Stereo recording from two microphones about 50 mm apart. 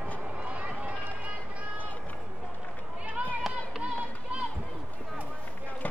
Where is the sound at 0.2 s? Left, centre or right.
Right.